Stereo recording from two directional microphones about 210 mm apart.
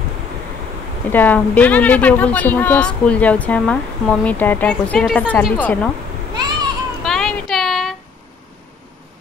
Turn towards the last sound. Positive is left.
turn(degrees=0)  # may be behind; listen again after turning